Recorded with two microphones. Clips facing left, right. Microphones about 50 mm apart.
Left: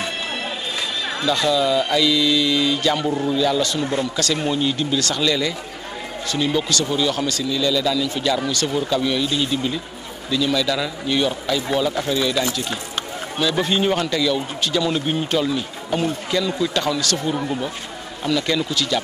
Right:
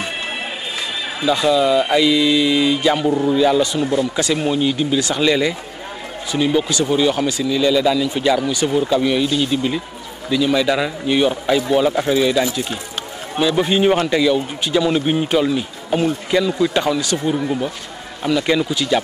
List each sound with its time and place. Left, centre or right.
1.2 s a man's voice: centre